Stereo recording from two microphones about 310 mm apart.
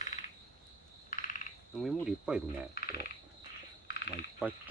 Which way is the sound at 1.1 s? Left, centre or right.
Left.